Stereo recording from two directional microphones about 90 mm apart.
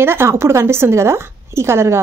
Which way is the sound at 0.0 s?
30° right (ahead or behind).